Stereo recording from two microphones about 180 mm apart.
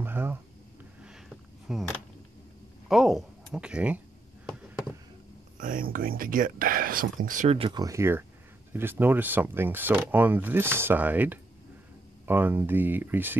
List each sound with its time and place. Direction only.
0.0 s a sound: 10° right (ahead or behind)
1.7 s speech: centre (ahead or behind)
2.9 s speech: centre (ahead or behind)
4.6 s a sound: 5° right (ahead or behind)
5.6 s speech: 50° right (ahead or behind)
7.5 s speech: 25° right (ahead or behind); by 13.4 s 10° right (ahead or behind)